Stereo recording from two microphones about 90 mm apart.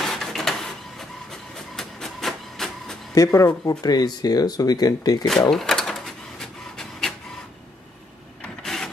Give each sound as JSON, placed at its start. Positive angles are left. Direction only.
{"t": 0.0, "sound": "printer", "side_deg": 5}
{"t": 3.2, "sound": "speech", "side_deg": 30}
{"t": 5.5, "sound": "a sound", "side_deg": 5}
{"t": 8.6, "sound": "mechanisms", "side_deg": 5}